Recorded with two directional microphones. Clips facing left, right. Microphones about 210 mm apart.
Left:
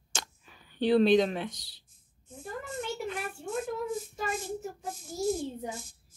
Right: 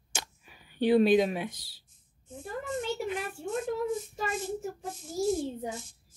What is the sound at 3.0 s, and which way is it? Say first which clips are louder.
Speech: right 2 dB; 20° right (ahead or behind).